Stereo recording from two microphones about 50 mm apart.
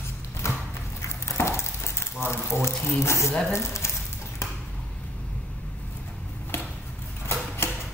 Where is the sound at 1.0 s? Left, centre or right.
Left.